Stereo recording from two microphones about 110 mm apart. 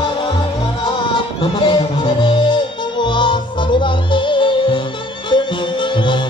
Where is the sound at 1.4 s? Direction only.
50° left (ahead or behind).